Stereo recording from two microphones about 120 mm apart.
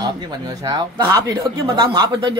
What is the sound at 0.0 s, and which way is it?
Speech, 35° right (ahead or behind).